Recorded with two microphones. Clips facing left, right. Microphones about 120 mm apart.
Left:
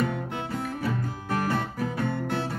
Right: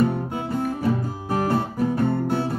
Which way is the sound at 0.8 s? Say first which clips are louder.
Right 6 dB; 25° right (ahead or behind).